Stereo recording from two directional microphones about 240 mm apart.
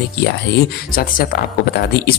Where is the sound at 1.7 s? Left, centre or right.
Left.